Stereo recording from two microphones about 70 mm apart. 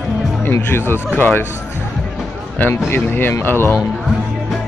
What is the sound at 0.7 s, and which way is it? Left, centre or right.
Speech, left.